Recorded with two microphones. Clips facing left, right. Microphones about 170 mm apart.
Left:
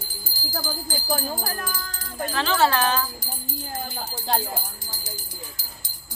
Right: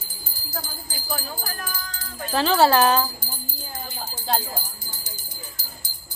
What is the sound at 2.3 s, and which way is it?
Jingle bell, 35° right (ahead or behind).